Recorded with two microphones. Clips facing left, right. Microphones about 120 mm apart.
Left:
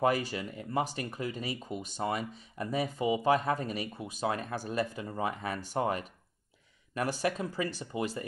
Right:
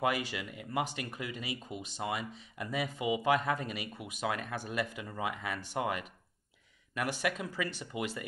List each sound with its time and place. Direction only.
0.0 s speech: 40° left (ahead or behind)